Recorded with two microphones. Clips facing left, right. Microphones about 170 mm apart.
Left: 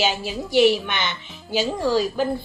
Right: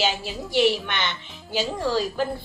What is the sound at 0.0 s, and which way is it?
A woman's voice, 5° left (ahead or behind).